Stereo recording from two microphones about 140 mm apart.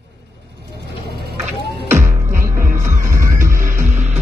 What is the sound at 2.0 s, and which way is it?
Music, 80° right.